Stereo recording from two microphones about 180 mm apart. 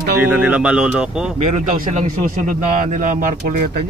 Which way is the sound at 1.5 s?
45° right (ahead or behind).